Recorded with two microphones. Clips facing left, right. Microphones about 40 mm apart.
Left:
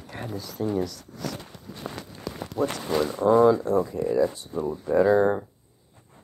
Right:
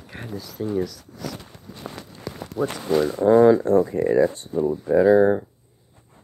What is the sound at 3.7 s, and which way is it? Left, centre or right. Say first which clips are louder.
Speech: right 5 dB; right.